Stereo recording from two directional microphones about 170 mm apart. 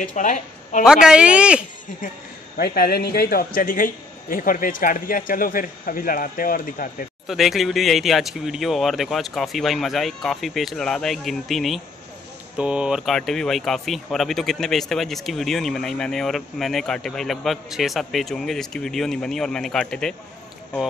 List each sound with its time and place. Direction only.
0.0 s a woman's voice: 45° left (ahead or behind)
0.8 s speech: 5° right (ahead or behind)
2.5 s a man's voice: 65° left (ahead or behind)
7.2 s speech: centre (ahead or behind)